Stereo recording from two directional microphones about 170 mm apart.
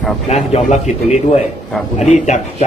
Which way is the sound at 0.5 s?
40° left (ahead or behind).